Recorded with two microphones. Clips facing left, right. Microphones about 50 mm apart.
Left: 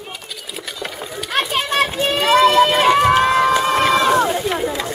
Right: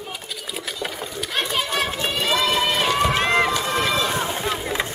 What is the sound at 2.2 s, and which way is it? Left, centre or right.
Run, left.